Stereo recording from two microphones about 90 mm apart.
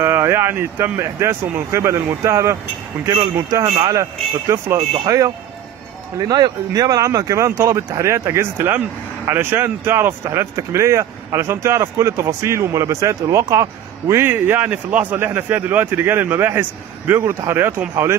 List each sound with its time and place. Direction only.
0.0 s speech: 30° right (ahead or behind)
14.3 s a man's voice: 20° right (ahead or behind)